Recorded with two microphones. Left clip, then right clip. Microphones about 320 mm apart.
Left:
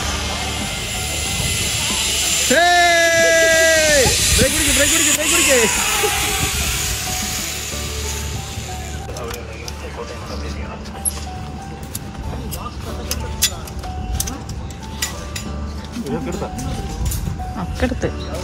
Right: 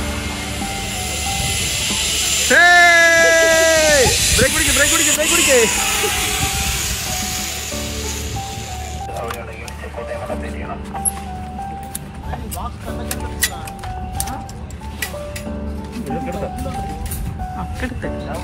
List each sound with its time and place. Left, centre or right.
0.6 s music: centre